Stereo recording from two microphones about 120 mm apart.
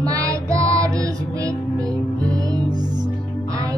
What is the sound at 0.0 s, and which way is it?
Music, 30° right (ahead or behind).